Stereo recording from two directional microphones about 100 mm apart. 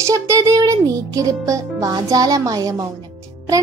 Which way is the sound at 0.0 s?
30° right (ahead or behind).